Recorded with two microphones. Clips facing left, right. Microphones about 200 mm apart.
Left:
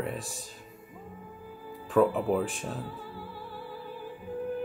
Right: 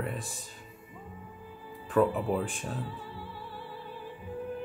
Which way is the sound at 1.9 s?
Centre (ahead or behind).